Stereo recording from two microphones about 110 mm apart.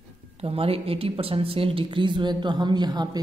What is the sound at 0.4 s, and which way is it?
A woman's voice, 60° right (ahead or behind).